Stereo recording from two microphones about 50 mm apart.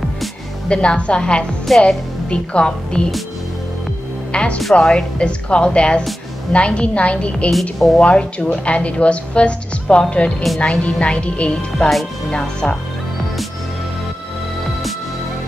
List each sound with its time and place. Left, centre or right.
0.7 s a woman's voice: centre
4.3 s a woman's voice: left